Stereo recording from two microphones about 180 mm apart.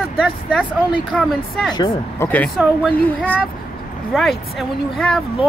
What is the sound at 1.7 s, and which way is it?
Speech, 25° left (ahead or behind).